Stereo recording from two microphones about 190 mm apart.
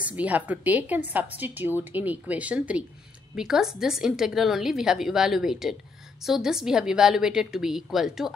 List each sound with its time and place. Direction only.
0.0 s a woman's voice: 10° right (ahead or behind)